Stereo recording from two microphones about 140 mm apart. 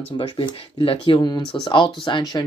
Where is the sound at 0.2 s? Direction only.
40° left (ahead or behind).